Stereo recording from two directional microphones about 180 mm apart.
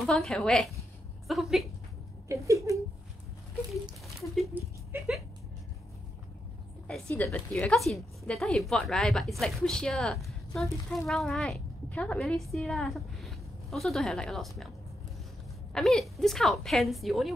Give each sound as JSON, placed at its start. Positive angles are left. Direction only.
{"t": 0.0, "sound": "speech", "side_deg": 0}
{"t": 2.4, "sound": "a sound", "side_deg": -15}
{"t": 4.4, "sound": "speech", "side_deg": -5}
{"t": 6.9, "sound": "a woman's voice", "side_deg": 5}
{"t": 15.7, "sound": "speech", "side_deg": 0}